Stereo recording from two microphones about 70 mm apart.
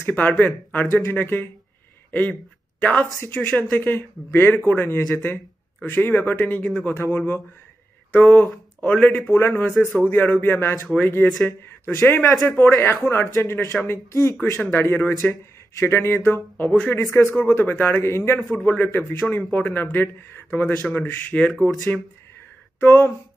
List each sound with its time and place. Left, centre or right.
0.0 s a man's voice: left
2.8 s a man's voice: left
18.4 s a man's voice: left
22.8 s speech: left